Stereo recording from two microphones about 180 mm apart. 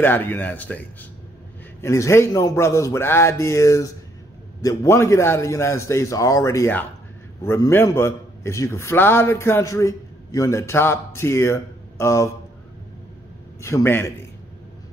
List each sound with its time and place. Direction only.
0.0 s a man's voice: 10° left (ahead or behind)
13.6 s a man's voice: 15° left (ahead or behind)